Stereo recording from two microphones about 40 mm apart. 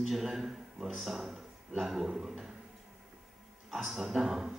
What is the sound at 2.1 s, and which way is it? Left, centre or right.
Speech, centre.